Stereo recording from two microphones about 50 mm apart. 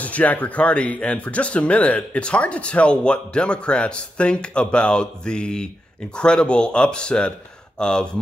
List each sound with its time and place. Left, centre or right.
0.0 s speech: left